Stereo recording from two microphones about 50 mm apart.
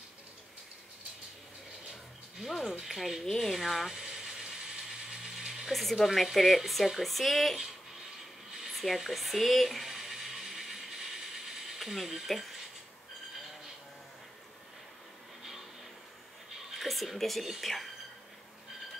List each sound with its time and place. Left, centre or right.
2.3 s speech: centre
3.9 s mechanisms: centre
5.0 s ratchet: centre
5.7 s speech: centre
8.7 s a sound: centre
16.5 s whispering: centre